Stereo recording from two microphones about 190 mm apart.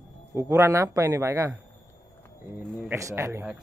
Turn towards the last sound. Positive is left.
turn(degrees=-15)  # may be behind; listen again after turning